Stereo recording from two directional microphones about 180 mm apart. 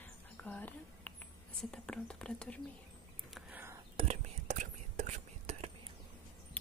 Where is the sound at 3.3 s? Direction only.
10° right (ahead or behind).